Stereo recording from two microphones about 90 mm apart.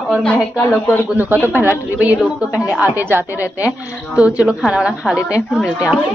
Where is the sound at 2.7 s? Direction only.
20° right (ahead or behind).